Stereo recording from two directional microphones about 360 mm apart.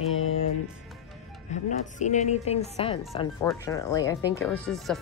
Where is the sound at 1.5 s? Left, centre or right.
Centre.